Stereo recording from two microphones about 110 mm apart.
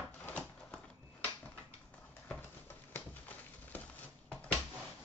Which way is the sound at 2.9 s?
15° left (ahead or behind).